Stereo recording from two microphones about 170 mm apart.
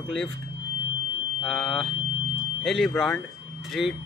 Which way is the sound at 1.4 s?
Centre (ahead or behind).